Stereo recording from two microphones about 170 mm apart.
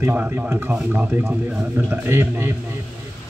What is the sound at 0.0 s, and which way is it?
A man's voice, 10° right (ahead or behind).